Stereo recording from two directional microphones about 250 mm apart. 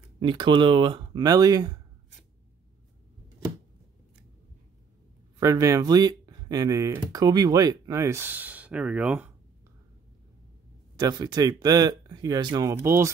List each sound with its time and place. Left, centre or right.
0.2 s speech: centre
5.4 s speech: centre
11.0 s speech: centre